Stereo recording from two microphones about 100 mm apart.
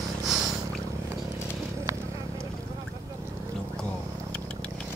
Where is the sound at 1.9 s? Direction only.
30° right (ahead or behind).